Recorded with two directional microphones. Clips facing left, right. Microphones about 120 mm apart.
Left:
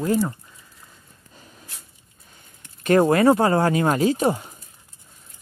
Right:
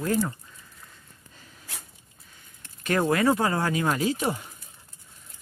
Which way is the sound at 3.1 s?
40° left (ahead or behind).